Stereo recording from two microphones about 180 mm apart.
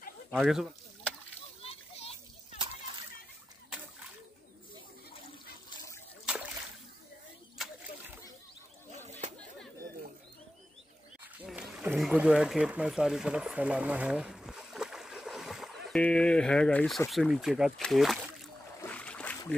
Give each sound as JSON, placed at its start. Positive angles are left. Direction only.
{"t": 0.4, "sound": "speech", "side_deg": 0}
{"t": 1.6, "sound": "children playing", "side_deg": 35}
{"t": 11.4, "sound": "speech", "side_deg": -5}
{"t": 18.8, "sound": "a sound", "side_deg": 5}